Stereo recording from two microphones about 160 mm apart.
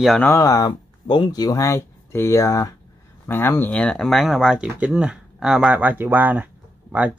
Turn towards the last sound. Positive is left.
turn(degrees=-10)  # may be behind; listen again after turning